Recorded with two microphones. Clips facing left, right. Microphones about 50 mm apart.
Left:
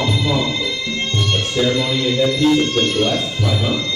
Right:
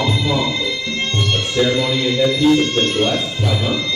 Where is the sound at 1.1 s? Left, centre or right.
Centre.